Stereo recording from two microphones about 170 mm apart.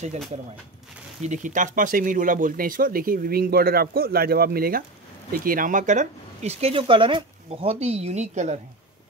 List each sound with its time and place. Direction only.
1.2 s speech: 45° right (ahead or behind)